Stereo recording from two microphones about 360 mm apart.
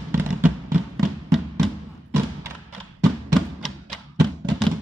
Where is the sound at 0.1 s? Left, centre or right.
Centre.